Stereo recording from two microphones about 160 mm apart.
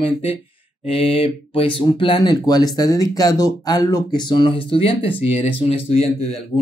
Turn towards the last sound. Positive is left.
turn(degrees=40)  # may be behind; listen again after turning